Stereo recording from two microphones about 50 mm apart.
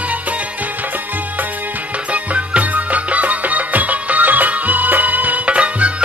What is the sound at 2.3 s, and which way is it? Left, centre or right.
Music, right.